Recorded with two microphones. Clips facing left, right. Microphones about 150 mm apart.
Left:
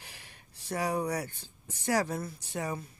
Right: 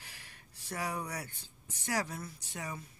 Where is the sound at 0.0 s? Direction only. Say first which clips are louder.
Left 3 dB; 25° left (ahead or behind).